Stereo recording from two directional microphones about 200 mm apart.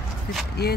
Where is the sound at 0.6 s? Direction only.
55° left (ahead or behind).